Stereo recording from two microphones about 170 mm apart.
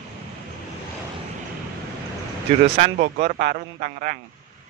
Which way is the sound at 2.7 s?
40° right (ahead or behind).